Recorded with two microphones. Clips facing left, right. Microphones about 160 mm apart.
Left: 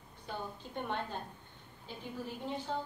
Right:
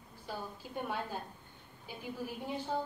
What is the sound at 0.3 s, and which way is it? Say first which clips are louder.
A woman's voice: even; 5° right (ahead or behind).